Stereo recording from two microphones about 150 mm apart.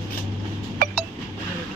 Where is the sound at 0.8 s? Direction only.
80° right.